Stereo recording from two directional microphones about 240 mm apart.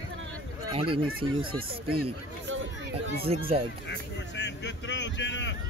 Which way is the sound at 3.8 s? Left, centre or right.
Left.